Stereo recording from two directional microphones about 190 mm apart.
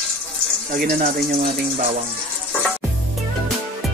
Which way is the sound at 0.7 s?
50° right (ahead or behind).